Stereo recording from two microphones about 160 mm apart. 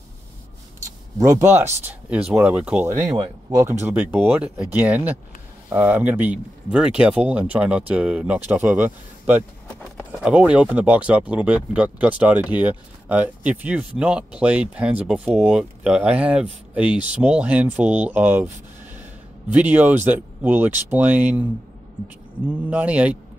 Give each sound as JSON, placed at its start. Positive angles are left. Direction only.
{"t": 1.1, "sound": "speech", "side_deg": -20}
{"t": 3.1, "sound": "speech", "side_deg": -20}
{"t": 3.8, "sound": "speech", "side_deg": -10}
{"t": 19.5, "sound": "speech", "side_deg": -10}